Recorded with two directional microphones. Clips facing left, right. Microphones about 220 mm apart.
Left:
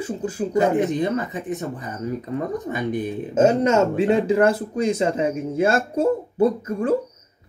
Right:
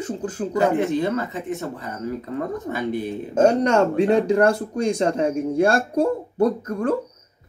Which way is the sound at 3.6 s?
5° left (ahead or behind).